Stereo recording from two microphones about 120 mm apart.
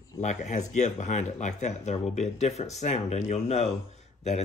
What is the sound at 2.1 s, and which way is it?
Speech, 70° left (ahead or behind).